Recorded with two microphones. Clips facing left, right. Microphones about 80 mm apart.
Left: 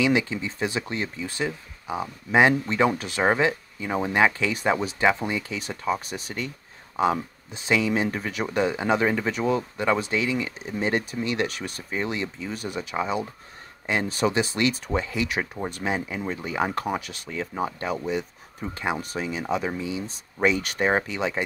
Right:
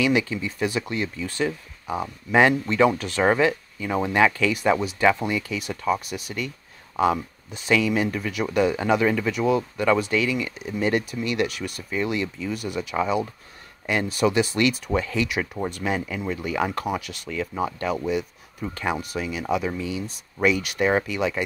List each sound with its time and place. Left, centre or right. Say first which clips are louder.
0.0 s speech: right 1 dB; left
8.5 s speech: right 2 dB; left